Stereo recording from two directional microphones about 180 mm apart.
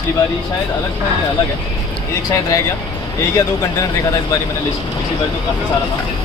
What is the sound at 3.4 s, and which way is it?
Speech, 20° left (ahead or behind).